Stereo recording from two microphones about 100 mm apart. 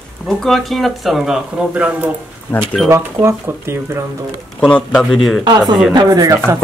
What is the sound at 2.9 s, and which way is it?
Speech, 25° right (ahead or behind).